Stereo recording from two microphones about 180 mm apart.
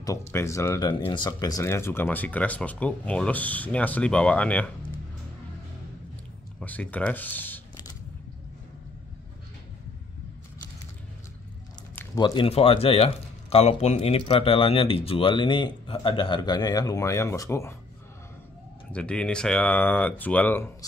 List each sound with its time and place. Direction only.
0.0 s speech: 15° left (ahead or behind)
6.6 s speech: 10° left (ahead or behind)
12.2 s speech: 30° left (ahead or behind)
18.9 s speech: 5° left (ahead or behind)